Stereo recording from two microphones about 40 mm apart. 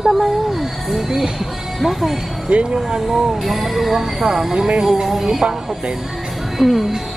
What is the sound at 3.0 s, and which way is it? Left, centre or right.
Speech, centre.